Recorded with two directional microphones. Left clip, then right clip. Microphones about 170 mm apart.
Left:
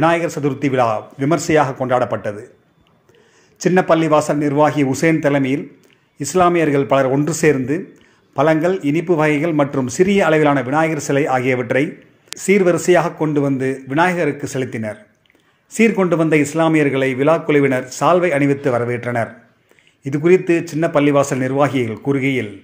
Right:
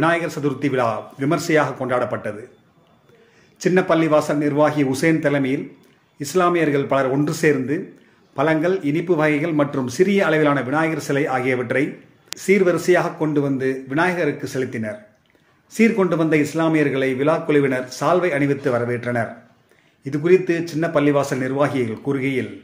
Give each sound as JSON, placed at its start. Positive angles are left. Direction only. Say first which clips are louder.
{"t": 0.0, "sound": "a man's voice", "louder": "left 3 dB", "side_deg": 25}
{"t": 3.6, "sound": "a man's voice", "louder": "left 3 dB", "side_deg": 25}
{"t": 12.3, "sound": "speech", "louder": "left 2 dB", "side_deg": 0}
{"t": 12.9, "sound": "a man's voice", "louder": "left 3 dB", "side_deg": 30}